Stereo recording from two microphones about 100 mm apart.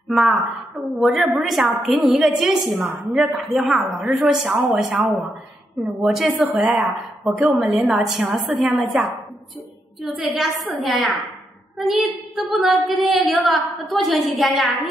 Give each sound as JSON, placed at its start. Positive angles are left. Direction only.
{"t": 0.1, "sound": "a woman's voice", "side_deg": -5}
{"t": 2.8, "sound": "a woman's voice", "side_deg": -15}
{"t": 3.3, "sound": "a child's voice", "side_deg": 0}